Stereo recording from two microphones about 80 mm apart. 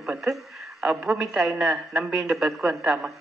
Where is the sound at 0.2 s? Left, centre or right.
Centre.